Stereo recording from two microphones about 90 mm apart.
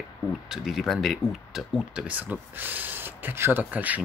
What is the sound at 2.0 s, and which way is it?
Speech, 20° right (ahead or behind).